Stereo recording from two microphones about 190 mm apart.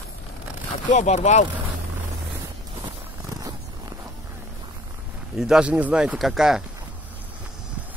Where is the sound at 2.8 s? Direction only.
20° right (ahead or behind).